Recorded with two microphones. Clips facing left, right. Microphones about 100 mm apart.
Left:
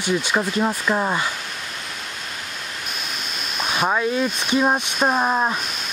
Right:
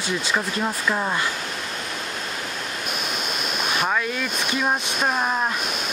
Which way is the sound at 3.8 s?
20° left (ahead or behind).